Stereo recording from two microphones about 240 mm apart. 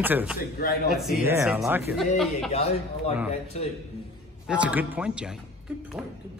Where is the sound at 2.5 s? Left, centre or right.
Left.